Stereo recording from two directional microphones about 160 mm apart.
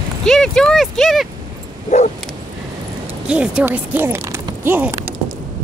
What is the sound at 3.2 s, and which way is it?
Speech, 5° right (ahead or behind).